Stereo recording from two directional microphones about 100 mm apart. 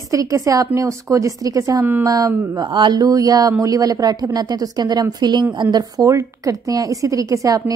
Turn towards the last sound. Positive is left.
turn(degrees=-35)  # may be behind; listen again after turning